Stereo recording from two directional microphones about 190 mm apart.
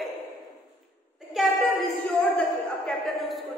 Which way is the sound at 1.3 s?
Centre (ahead or behind).